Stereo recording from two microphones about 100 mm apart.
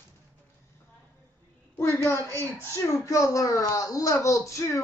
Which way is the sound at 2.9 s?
30° left (ahead or behind).